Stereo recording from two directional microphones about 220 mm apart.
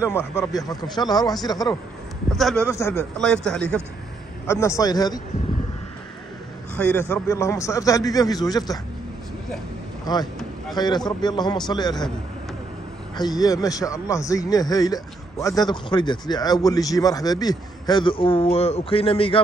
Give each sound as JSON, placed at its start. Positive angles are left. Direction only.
{"t": 0.0, "sound": "a man's voice", "side_deg": 10}
{"t": 2.3, "sound": "a man's voice", "side_deg": 0}
{"t": 6.8, "sound": "a man's voice", "side_deg": 10}
{"t": 10.1, "sound": "a man's voice", "side_deg": 20}
{"t": 13.1, "sound": "a man's voice", "side_deg": 20}